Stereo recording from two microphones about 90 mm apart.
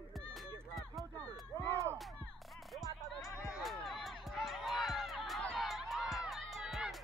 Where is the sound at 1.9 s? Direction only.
Centre (ahead or behind).